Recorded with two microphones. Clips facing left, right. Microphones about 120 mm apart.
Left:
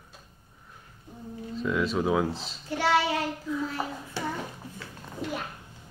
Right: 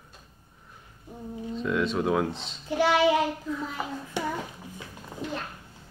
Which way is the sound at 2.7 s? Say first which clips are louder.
Right 3 dB; 15° right (ahead or behind).